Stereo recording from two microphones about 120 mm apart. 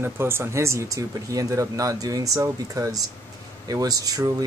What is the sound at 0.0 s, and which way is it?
Speech, 20° right (ahead or behind).